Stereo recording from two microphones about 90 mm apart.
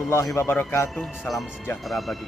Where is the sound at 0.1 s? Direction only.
30° left (ahead or behind).